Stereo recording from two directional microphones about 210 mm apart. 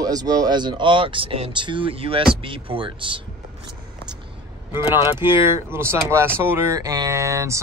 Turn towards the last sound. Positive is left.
turn(degrees=-15)  # may be behind; listen again after turning